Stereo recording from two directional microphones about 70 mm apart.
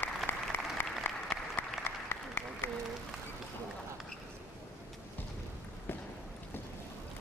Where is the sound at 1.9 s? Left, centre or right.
Left.